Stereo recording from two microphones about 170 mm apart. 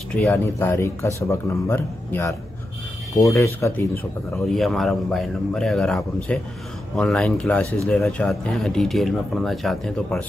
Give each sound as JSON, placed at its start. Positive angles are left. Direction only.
{"t": 0.3, "sound": "speech", "side_deg": 15}
{"t": 4.5, "sound": "speech", "side_deg": 0}